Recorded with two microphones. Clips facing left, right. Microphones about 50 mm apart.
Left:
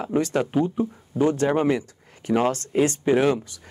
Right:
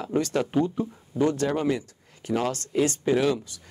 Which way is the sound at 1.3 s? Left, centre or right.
Left.